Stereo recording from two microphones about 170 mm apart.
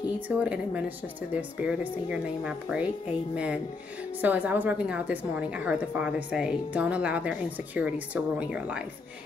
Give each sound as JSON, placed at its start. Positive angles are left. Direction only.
{"t": 0.3, "sound": "a woman's voice", "side_deg": -10}
{"t": 4.2, "sound": "a woman's voice", "side_deg": -10}